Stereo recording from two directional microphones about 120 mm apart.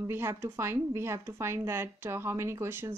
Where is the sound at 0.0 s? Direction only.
20° right (ahead or behind).